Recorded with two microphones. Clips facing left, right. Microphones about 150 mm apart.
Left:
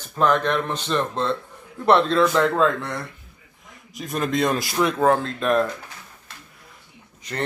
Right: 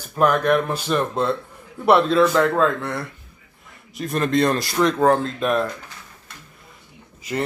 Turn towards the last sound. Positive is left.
turn(degrees=-5)  # may be behind; listen again after turning